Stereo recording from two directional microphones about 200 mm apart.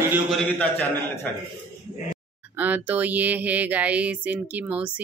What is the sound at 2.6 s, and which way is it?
Speech, 10° right (ahead or behind).